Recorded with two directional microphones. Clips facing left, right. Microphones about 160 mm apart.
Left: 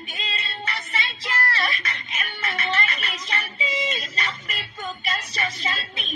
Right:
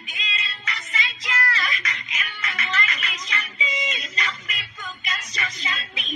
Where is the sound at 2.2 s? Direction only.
30° left (ahead or behind).